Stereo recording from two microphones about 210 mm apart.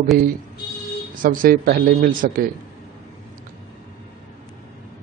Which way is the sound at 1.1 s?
40° right (ahead or behind).